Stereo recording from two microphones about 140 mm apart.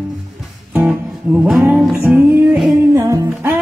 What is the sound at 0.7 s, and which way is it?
Music, 10° right (ahead or behind).